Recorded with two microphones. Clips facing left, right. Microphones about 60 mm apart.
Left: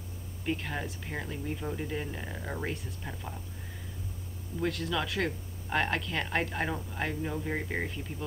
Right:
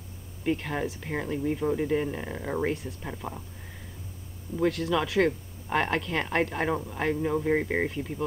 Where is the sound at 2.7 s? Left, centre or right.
Centre.